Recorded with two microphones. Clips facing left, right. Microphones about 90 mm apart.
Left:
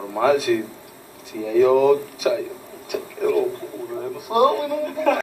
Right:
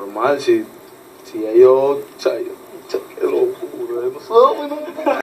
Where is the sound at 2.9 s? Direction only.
10° right (ahead or behind).